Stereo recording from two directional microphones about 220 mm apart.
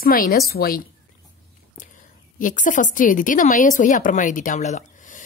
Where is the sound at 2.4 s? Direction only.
35° left (ahead or behind).